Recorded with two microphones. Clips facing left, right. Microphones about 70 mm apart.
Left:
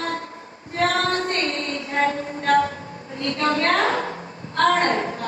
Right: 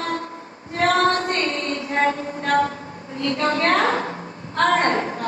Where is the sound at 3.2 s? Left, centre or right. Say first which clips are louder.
Right 1 dB; right.